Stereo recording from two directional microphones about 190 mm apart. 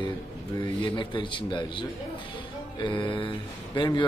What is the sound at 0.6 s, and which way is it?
A man's voice, 25° left (ahead or behind).